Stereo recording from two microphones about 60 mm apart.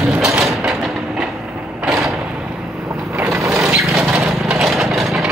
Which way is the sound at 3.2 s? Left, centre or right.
Right.